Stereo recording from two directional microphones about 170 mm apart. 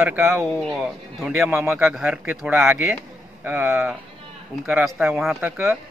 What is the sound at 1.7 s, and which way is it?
A man's voice, centre (ahead or behind).